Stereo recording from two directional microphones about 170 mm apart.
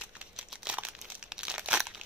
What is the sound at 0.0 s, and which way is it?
Crumpling, 5° right (ahead or behind).